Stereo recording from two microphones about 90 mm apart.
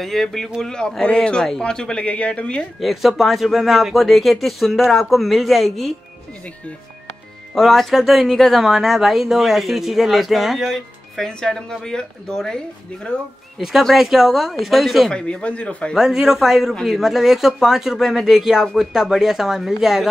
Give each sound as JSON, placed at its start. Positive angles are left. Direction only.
{"t": 0.0, "sound": "a man's voice", "side_deg": 5}
{"t": 2.8, "sound": "speech", "side_deg": 0}
{"t": 7.5, "sound": "speech", "side_deg": 0}
{"t": 13.6, "sound": "speech", "side_deg": -5}
{"t": 15.9, "sound": "speech", "side_deg": -5}